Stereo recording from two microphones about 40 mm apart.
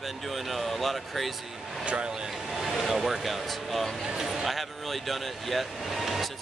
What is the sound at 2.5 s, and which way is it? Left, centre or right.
Speech, centre.